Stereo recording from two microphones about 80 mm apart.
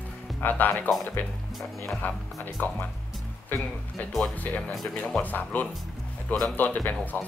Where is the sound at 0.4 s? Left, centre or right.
Left.